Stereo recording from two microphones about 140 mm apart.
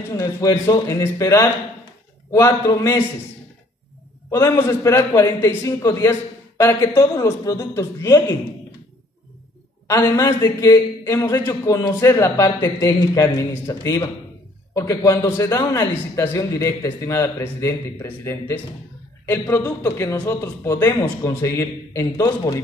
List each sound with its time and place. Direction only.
0.2 s a man's voice: 25° left (ahead or behind)
4.3 s a man's voice: 20° left (ahead or behind)
9.8 s a man's voice: 25° left (ahead or behind)